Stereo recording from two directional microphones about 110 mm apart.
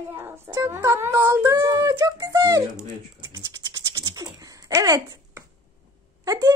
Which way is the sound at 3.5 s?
35° right (ahead or behind).